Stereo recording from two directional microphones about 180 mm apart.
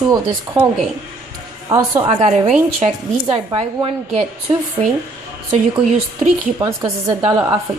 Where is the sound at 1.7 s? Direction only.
20° right (ahead or behind).